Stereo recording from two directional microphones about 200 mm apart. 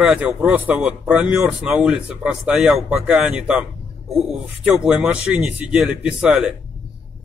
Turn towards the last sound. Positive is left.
turn(degrees=-5)  # may be behind; listen again after turning